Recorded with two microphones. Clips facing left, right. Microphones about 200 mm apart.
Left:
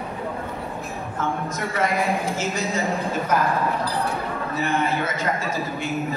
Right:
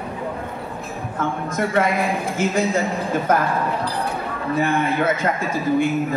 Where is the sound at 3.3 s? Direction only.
55° right (ahead or behind).